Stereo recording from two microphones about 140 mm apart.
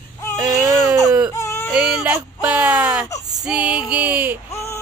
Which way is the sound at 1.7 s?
5° right (ahead or behind).